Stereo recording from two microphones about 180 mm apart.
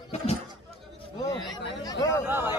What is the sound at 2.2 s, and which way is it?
Speech, 10° right (ahead or behind).